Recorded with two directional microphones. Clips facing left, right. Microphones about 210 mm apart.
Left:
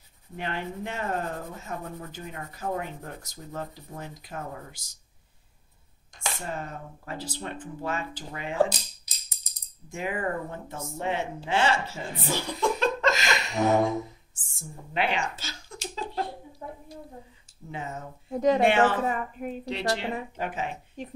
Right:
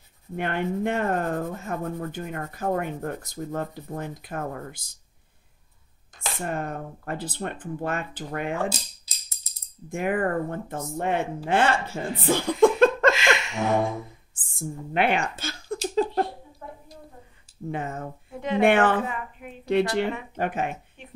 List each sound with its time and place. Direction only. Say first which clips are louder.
0.4 s speech: right 7 dB; 55° right (ahead or behind)
6.4 s speech: right 9 dB; 55° right (ahead or behind)
8.6 s music: right 4 dB; 15° left (ahead or behind)
9.8 s speech: right 5 dB; 55° right (ahead or behind)
13.1 s a sound: right 4 dB; 40° left (ahead or behind)
14.3 s speech: right 10 dB; 55° right (ahead or behind)
15.9 s a sound: right 9 dB; 55° right (ahead or behind)
17.6 s speech: right 5 dB; 55° right (ahead or behind)
18.3 s speech: left 6 dB; 40° left (ahead or behind)
18.6 s speech: right 7 dB; 55° right (ahead or behind)
19.0 s speech: left 5 dB; 40° left (ahead or behind)
19.6 s speech: right 9 dB; 55° right (ahead or behind)
21.0 s speech: left 9 dB; 40° left (ahead or behind)